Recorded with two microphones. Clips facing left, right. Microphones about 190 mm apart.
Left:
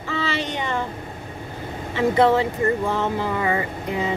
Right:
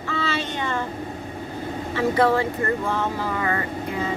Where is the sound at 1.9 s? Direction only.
20° left (ahead or behind).